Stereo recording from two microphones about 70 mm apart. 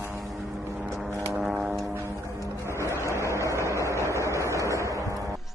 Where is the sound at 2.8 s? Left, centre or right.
Left.